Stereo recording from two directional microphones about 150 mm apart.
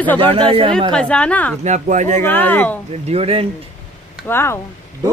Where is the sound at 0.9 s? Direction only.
5° left (ahead or behind).